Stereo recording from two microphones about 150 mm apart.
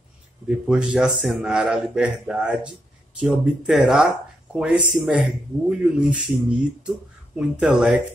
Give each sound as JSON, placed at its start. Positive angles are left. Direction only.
{"t": 0.5, "sound": "a man's voice", "side_deg": -5}